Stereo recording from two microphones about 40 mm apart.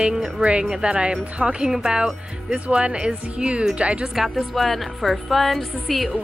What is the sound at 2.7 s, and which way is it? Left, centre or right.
Music, right.